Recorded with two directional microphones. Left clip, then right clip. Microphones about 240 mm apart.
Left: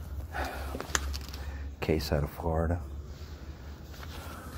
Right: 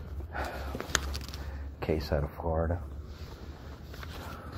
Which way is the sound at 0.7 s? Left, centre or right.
Right.